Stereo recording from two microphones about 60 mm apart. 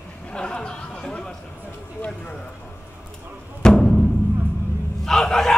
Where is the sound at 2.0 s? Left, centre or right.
Centre.